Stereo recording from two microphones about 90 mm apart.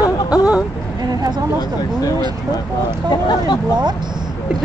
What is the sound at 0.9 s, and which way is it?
Speech, 45° right (ahead or behind).